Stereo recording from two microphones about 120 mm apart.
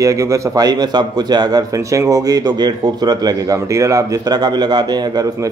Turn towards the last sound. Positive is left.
turn(degrees=-30)  # may be behind; listen again after turning